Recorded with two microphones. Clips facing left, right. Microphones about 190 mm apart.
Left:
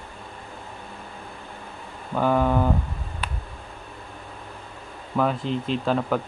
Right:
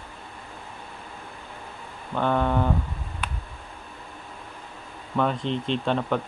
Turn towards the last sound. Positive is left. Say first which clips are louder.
# left 1 dB
turn(degrees=5)  # may be behind; listen again after turning